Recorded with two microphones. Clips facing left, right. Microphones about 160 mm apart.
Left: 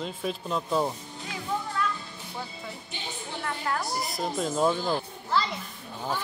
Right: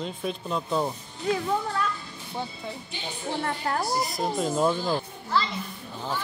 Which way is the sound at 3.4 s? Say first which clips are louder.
Right 1 dB; 40° right (ahead or behind).